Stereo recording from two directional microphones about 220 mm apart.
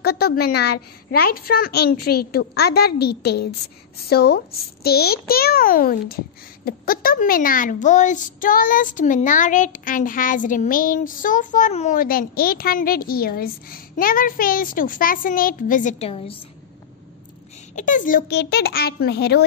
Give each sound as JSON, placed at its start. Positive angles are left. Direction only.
{"t": 0.0, "sound": "a child's voice", "side_deg": 45}
{"t": 17.7, "sound": "a child's voice", "side_deg": 35}